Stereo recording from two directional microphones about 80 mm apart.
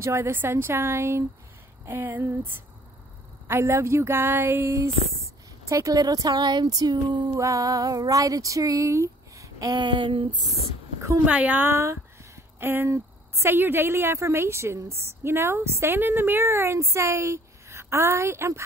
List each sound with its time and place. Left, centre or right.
0.0 s a woman's voice: right
5.7 s speech: right
7.3 s female singing: right
9.7 s a sound: right
11.2 s a woman's voice: centre; by 18.6 s right